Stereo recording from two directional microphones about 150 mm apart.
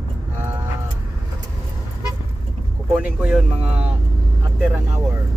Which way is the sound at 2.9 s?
10° right (ahead or behind).